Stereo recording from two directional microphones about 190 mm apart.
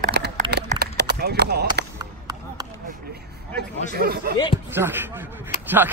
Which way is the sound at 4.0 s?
55° right (ahead or behind).